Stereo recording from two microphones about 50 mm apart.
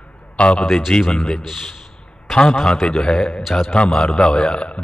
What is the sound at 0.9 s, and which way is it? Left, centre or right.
Speech, centre.